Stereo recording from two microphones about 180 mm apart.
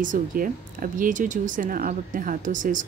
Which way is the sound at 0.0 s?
50° right (ahead or behind).